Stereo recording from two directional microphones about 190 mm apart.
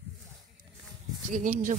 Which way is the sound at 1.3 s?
45° right (ahead or behind).